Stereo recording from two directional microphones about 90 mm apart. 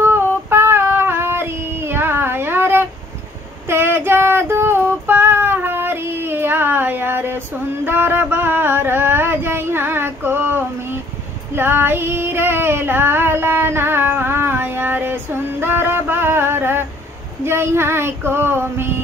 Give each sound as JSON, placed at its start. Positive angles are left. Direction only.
{"t": 0.0, "sound": "female singing", "side_deg": -25}